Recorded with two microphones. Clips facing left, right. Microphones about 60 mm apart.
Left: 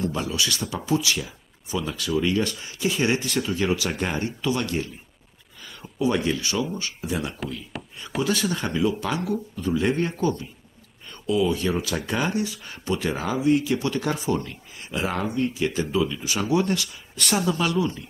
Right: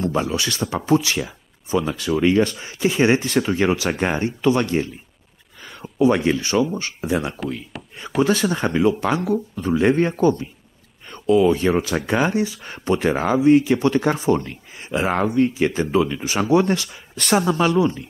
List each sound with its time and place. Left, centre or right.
0.0 s speech: right
7.7 s a sound: centre
8.2 s speech: right